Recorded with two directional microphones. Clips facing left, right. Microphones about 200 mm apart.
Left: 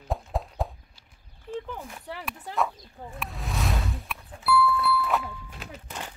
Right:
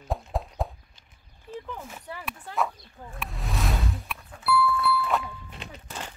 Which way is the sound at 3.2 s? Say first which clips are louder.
Even; centre (ahead or behind).